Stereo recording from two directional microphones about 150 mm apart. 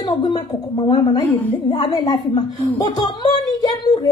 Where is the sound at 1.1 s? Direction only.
35° left (ahead or behind).